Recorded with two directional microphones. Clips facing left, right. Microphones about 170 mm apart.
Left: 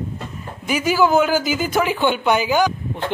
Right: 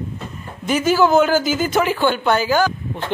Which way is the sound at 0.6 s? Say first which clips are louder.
Right 2 dB; 10° left (ahead or behind).